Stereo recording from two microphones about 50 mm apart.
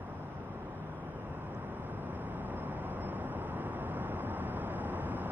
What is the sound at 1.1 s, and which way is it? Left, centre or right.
Vehicle, right.